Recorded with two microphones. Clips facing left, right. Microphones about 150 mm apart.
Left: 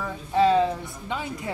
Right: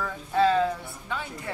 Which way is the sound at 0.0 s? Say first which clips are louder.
Left 2 dB; 20° left (ahead or behind).